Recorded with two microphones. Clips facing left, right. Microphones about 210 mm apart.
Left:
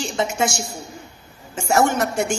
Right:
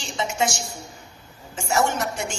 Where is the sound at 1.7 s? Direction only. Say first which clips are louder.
Left 4 dB; 55° left (ahead or behind).